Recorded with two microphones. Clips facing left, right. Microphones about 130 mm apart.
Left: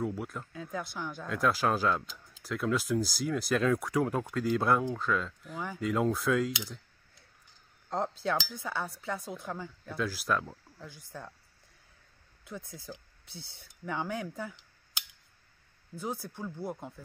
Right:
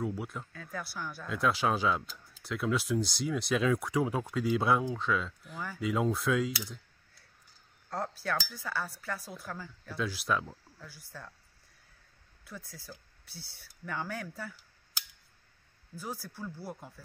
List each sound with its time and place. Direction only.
0.0 s speech: centre (ahead or behind)
0.5 s speech: 15° left (ahead or behind)
1.2 s speech: centre (ahead or behind)
7.9 s speech: 20° left (ahead or behind)
9.9 s speech: centre (ahead or behind)
10.9 s speech: 20° left (ahead or behind)
12.4 s speech: 20° left (ahead or behind)